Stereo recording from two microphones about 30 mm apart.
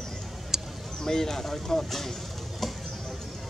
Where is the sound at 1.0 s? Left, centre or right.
Centre.